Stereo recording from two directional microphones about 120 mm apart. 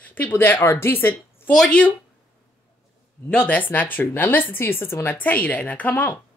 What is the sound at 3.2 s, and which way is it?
Speech, 10° left (ahead or behind).